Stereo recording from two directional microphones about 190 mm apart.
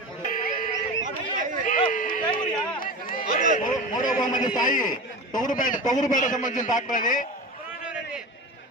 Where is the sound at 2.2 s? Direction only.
25° left (ahead or behind).